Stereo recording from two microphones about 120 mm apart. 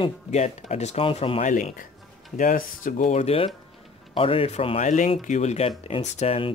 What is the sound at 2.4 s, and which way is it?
Speech, 90° left.